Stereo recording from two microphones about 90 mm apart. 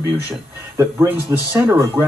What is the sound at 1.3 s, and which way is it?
Speech, 35° right (ahead or behind).